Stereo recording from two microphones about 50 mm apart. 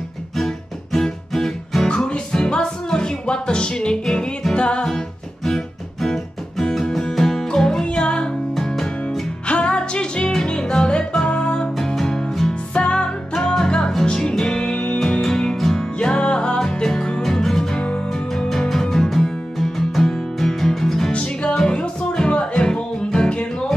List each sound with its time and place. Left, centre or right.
0.9 s music: centre
1.9 s music: centre
8.5 s music: centre
9.5 s music: left
11.7 s music: centre
17.7 s music: left
18.5 s music: centre
21.1 s music: left